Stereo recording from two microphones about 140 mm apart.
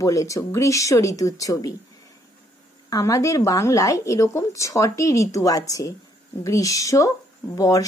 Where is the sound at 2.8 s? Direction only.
25° left (ahead or behind).